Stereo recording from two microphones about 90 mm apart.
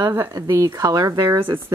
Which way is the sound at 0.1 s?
25° right (ahead or behind).